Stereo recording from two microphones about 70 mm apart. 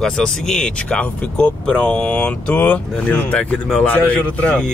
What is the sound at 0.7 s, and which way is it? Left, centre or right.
A man's voice, centre.